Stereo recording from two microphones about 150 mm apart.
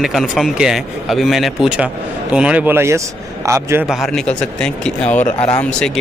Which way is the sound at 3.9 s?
Centre (ahead or behind).